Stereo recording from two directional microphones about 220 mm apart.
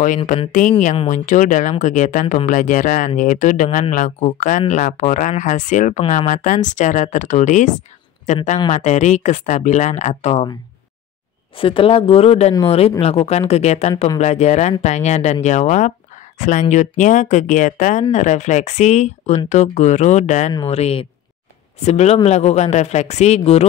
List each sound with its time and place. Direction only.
0.2 s speech: 30° left (ahead or behind)
11.5 s speech: 25° left (ahead or behind)